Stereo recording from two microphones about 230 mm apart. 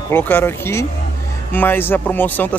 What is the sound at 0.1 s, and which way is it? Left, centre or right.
Speech, centre.